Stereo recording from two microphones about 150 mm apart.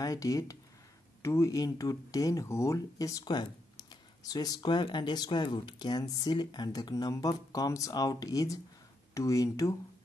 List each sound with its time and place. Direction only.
0.0 s speech: 25° left (ahead or behind)